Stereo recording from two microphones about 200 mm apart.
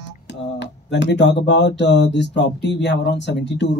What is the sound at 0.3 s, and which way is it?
Speech, 60° left (ahead or behind).